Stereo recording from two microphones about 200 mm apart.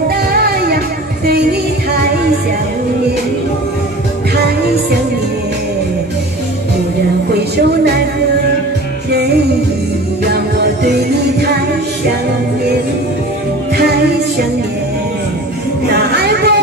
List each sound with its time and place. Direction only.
0.3 s music: 50° right (ahead or behind)
7.3 s music: 55° right (ahead or behind)
10.2 s music: 55° right (ahead or behind)
15.9 s music: 55° right (ahead or behind)